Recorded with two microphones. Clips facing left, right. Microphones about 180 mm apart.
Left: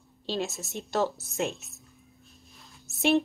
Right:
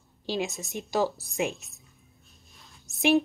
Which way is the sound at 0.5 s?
Centre (ahead or behind).